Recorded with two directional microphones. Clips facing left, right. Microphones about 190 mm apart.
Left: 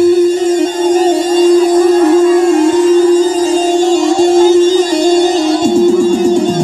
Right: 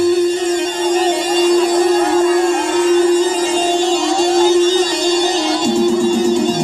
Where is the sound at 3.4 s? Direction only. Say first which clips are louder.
Left 5 dB; 40° left (ahead or behind).